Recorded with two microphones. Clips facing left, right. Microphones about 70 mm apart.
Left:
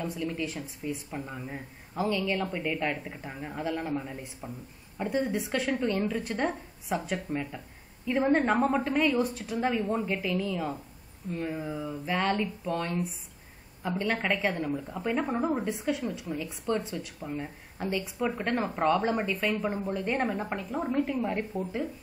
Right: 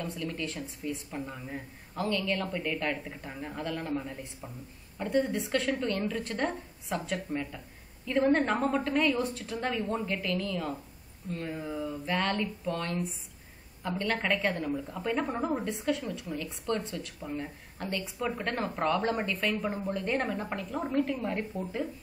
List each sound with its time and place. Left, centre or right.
0.0 s a woman's voice: centre
1.3 s speech: centre
2.0 s a woman's voice: centre
3.3 s a woman's voice: centre
17.2 s speech: centre
17.7 s a woman's voice: centre
21.1 s a woman's voice: centre